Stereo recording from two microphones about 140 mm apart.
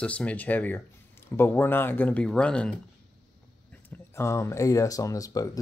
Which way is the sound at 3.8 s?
20° left (ahead or behind).